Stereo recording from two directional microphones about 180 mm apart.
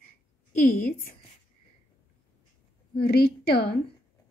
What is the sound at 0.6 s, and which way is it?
Speech, 45° left (ahead or behind).